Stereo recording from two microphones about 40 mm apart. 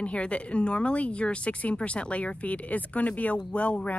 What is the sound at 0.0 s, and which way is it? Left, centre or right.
A woman's voice, left.